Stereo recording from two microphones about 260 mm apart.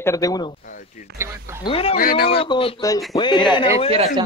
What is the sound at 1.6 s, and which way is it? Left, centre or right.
Speech, left.